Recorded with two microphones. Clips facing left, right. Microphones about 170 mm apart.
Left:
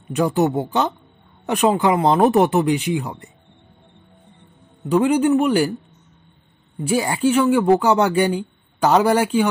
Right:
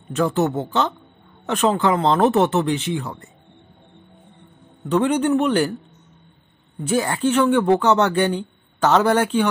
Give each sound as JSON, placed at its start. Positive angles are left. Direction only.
{"t": 0.1, "sound": "speech", "side_deg": 15}
{"t": 4.8, "sound": "speech", "side_deg": 10}
{"t": 6.8, "sound": "speech", "side_deg": 10}